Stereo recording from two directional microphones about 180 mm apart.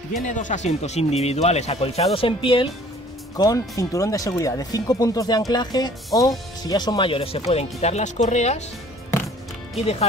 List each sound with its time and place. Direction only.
0.1 s speech: 45° left (ahead or behind)